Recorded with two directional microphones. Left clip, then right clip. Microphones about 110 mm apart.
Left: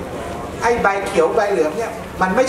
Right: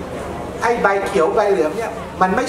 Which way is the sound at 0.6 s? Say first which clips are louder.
Even; 20° right (ahead or behind).